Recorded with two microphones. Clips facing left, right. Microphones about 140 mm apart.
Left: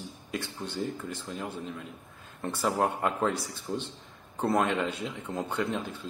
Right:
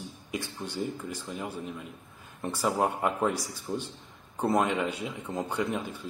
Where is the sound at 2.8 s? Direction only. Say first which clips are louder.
Even; 5° right (ahead or behind).